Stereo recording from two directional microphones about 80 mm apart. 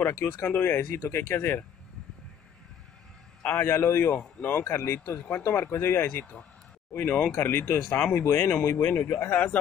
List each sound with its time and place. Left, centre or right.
0.0 s speech: left
3.4 s speech: left